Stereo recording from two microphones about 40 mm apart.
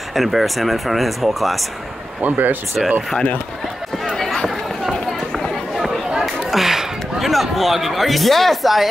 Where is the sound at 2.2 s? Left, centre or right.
Right.